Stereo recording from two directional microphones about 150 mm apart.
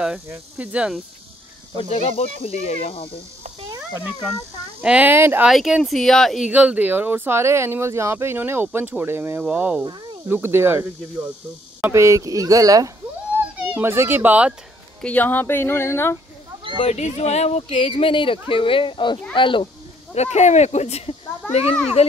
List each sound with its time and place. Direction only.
0.3 s speech: 10° right (ahead or behind)
1.8 s speech: 45° left (ahead or behind)
4.8 s speech: 10° right (ahead or behind)
5.5 s speech: centre (ahead or behind); by 12.9 s 25° right (ahead or behind)
13.6 s speech: 10° right (ahead or behind)
15.0 s speech: 10° left (ahead or behind)
16.7 s speech: 45° left (ahead or behind)
20.2 s speech: 50° left (ahead or behind)